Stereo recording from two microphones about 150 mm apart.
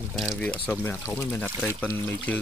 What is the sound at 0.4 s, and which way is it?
Speech, 10° left (ahead or behind).